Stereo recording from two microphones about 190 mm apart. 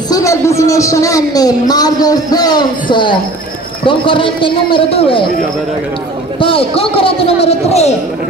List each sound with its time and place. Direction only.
0.1 s a man's voice: 15° left (ahead or behind)
6.4 s a man's voice: 30° left (ahead or behind)